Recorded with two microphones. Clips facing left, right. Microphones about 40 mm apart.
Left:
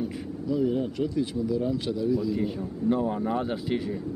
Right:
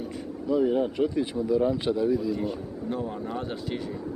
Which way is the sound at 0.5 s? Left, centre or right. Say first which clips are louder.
Right 3 dB; right.